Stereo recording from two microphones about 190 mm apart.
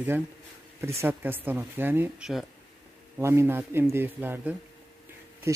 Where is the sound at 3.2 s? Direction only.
15° right (ahead or behind).